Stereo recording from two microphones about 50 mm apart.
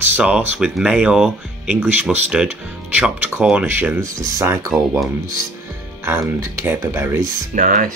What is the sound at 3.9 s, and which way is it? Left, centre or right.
Speech, right.